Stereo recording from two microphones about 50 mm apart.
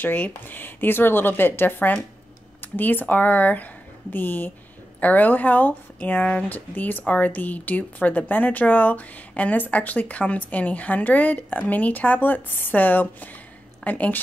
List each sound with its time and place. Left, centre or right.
0.0 s speech: left